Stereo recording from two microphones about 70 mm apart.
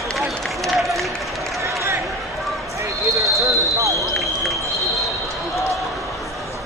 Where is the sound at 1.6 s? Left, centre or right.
Right.